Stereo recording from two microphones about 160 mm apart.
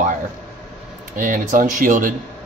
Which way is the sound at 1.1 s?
55° right (ahead or behind).